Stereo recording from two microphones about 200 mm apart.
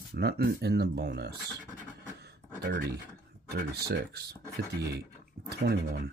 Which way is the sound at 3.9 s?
50° right (ahead or behind).